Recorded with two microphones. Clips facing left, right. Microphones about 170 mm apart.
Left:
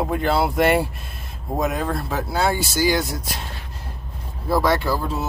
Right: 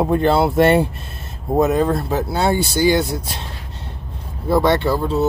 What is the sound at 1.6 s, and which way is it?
Speech, 35° right (ahead or behind).